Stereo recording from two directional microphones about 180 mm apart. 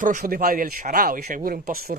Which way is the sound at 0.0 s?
45° right (ahead or behind).